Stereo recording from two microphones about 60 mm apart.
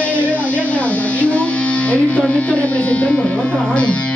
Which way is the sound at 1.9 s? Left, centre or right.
Left.